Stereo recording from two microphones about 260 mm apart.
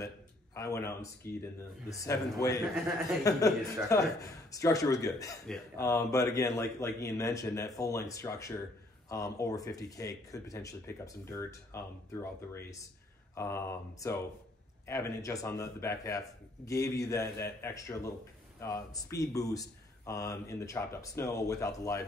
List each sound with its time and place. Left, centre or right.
0.6 s speech: centre
1.2 s speech: left
1.9 s speech: centre